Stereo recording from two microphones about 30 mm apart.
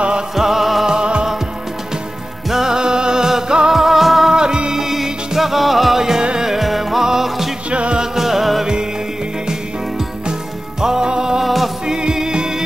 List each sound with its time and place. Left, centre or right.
0.4 s music: centre
0.8 s music: right
2.5 s music: centre
2.8 s music: right
3.7 s music: centre
5.9 s music: centre
6.6 s music: centre
7.7 s music: right
8.0 s music: centre
10.8 s music: centre
11.4 s music: centre
11.9 s music: right